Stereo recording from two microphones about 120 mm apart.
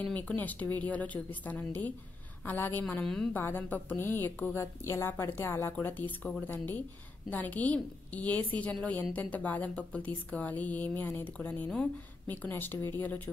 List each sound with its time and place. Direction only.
0.0 s a woman's voice: 10° left (ahead or behind)
3.3 s a woman's voice: 15° left (ahead or behind)